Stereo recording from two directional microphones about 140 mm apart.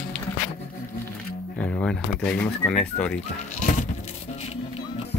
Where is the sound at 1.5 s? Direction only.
10° left (ahead or behind).